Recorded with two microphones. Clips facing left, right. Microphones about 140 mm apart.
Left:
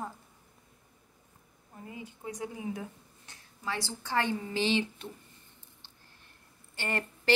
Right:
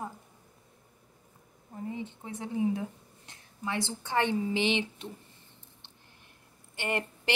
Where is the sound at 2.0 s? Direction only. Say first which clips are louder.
Even; 25° right (ahead or behind).